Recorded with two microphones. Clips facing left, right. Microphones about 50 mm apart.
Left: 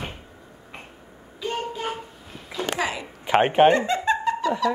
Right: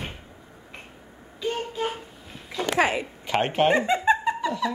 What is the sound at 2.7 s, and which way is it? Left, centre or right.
Speech, right.